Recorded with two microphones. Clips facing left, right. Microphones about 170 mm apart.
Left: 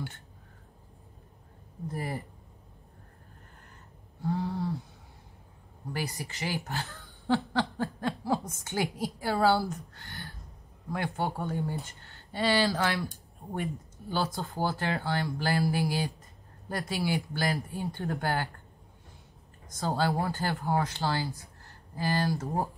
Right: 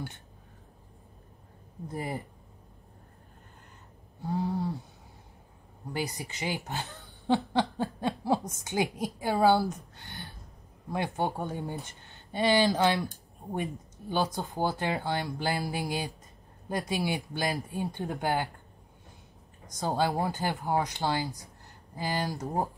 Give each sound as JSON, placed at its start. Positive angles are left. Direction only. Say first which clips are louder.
{"t": 1.9, "sound": "speech", "louder": "even", "side_deg": -20}
{"t": 4.2, "sound": "speech", "louder": "right 1 dB", "side_deg": -20}
{"t": 5.9, "sound": "speech", "louder": "right 2 dB", "side_deg": -20}
{"t": 9.9, "sound": "a sound", "louder": "even", "side_deg": -20}
{"t": 10.9, "sound": "speech", "louder": "right 1 dB", "side_deg": -20}
{"t": 19.7, "sound": "speech", "louder": "right 1 dB", "side_deg": -15}